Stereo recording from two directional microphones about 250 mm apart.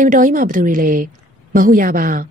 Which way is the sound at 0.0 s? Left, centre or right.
Right.